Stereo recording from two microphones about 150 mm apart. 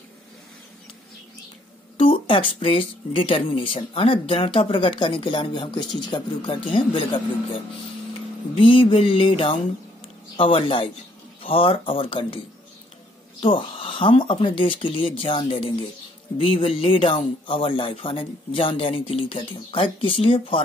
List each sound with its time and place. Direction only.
2.0 s speech: 35° left (ahead or behind)
13.4 s speech: 35° left (ahead or behind)